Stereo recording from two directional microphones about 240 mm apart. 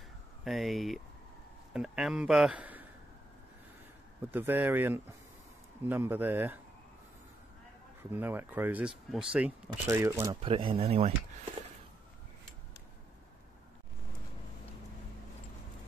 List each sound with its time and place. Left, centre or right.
0.4 s a man's voice: centre
4.3 s speech: centre
8.1 s speech: centre
10.4 s speech: right